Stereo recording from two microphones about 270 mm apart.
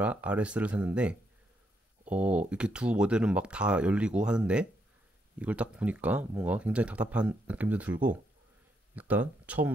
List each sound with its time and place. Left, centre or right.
0.0 s speech: centre